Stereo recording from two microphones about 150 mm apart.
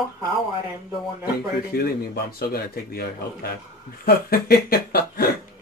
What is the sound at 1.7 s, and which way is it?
Speech, 90° left.